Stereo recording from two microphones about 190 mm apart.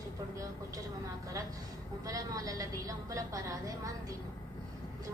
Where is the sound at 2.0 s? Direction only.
20° right (ahead or behind).